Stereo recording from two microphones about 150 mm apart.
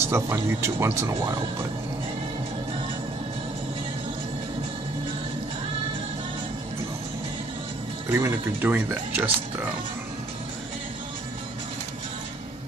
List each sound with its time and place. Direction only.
0.0 s speech: 20° right (ahead or behind)
8.1 s speech: 15° right (ahead or behind)